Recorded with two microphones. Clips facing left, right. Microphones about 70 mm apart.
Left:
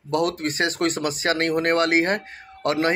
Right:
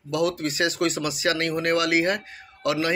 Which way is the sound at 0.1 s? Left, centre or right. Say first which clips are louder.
Left 1 dB; left.